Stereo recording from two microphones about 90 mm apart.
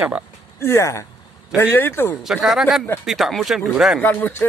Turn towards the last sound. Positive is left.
turn(degrees=20)  # may be behind; listen again after turning